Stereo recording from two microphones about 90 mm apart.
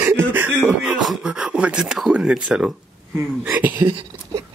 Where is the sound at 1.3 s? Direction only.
10° right (ahead or behind).